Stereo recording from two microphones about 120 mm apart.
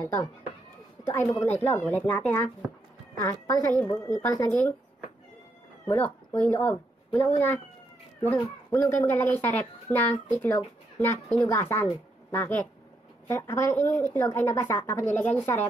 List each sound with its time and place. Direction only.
0.0 s speech: 35° left (ahead or behind)
1.0 s a woman's voice: 20° left (ahead or behind)
5.9 s a woman's voice: 10° left (ahead or behind)